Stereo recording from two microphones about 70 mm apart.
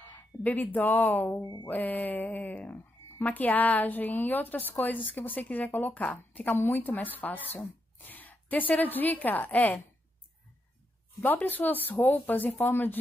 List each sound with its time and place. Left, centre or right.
0.4 s a woman's voice: left
11.2 s speech: left